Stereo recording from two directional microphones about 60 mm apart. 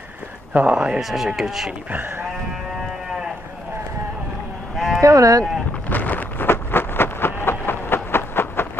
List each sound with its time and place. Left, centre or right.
0.5 s speech: right
1.0 s speech: centre
1.9 s speech: right
4.7 s sheep: centre
5.0 s speech: right
5.9 s a sound: left